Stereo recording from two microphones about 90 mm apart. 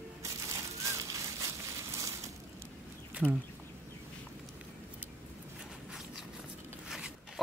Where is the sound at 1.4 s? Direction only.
40° right (ahead or behind).